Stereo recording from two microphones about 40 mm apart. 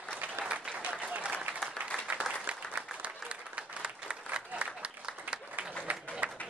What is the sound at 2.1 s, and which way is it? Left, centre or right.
Applause, right.